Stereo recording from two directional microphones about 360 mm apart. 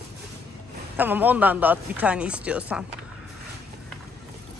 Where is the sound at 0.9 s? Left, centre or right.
Centre.